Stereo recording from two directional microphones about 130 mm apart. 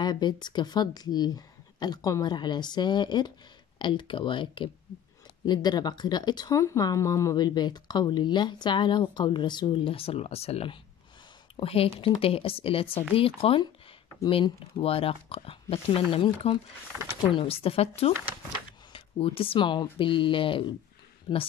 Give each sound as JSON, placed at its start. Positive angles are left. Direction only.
{"t": 0.0, "sound": "speech", "side_deg": 35}
{"t": 16.9, "sound": "speech", "side_deg": -15}
{"t": 17.4, "sound": "speech", "side_deg": 45}